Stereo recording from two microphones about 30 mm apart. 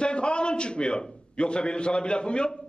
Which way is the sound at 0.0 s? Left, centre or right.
Left.